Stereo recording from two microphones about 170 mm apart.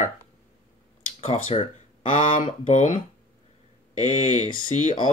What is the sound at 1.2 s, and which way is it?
Speech, 35° left (ahead or behind).